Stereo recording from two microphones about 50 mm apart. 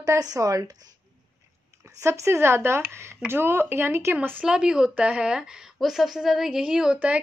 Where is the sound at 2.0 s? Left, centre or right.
Right.